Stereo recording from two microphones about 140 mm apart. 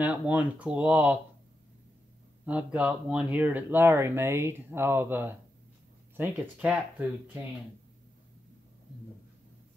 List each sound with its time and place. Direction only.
0.0 s speech: 10° right (ahead or behind)
2.4 s speech: 10° right (ahead or behind)